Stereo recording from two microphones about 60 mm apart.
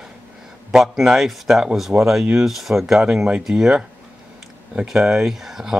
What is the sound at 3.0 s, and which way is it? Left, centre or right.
Speech, centre.